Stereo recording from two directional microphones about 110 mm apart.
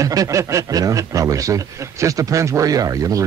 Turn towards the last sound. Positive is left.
turn(degrees=-30)  # may be behind; listen again after turning